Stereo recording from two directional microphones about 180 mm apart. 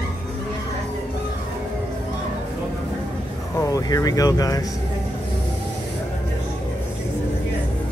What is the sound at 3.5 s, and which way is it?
Speech, 20° left (ahead or behind).